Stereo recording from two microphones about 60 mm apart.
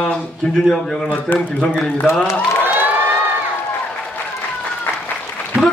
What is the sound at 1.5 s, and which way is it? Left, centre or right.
Speech, left.